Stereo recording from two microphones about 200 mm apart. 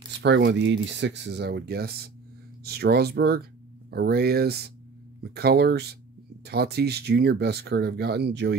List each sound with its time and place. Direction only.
0.2 s speech: 60° right (ahead or behind)